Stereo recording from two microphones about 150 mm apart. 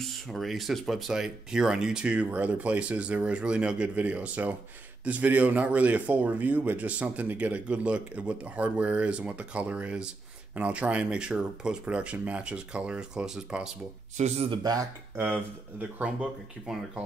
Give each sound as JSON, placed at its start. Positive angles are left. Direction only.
{"t": 0.0, "sound": "speech", "side_deg": 0}
{"t": 14.1, "sound": "speech", "side_deg": -45}
{"t": 14.6, "sound": "speech", "side_deg": -25}